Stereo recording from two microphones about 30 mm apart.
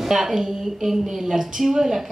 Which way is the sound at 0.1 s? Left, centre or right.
Centre.